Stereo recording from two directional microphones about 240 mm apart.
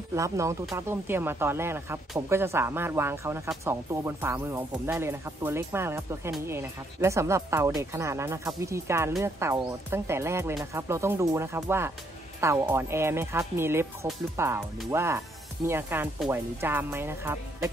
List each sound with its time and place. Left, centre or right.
0.1 s speech: centre